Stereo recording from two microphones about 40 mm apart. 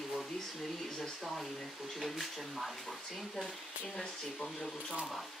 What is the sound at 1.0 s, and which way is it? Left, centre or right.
Speech, centre.